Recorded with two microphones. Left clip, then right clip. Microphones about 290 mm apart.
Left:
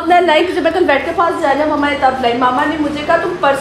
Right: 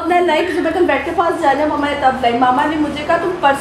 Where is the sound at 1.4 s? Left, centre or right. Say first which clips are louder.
Left 1 dB; centre.